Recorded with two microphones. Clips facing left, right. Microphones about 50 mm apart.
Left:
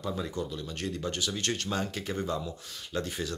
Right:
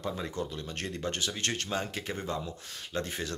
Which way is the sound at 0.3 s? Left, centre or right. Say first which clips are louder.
Left 1 dB; right.